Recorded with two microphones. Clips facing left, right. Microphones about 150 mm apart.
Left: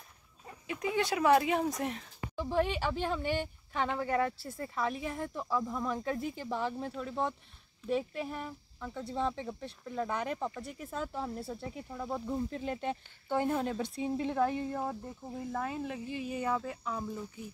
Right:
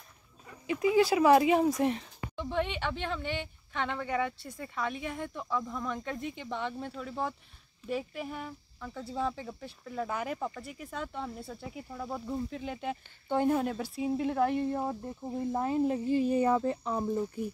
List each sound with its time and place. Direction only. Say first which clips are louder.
0.7 s speech: right 7 dB; 5° right (ahead or behind)
13.3 s speech: right 3 dB; 15° right (ahead or behind)
15.6 s speech: right 8 dB; 30° right (ahead or behind)